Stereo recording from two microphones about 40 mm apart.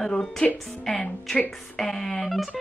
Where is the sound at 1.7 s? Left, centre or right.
Centre.